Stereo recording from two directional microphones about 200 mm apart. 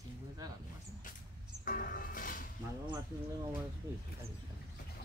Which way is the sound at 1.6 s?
45° left (ahead or behind).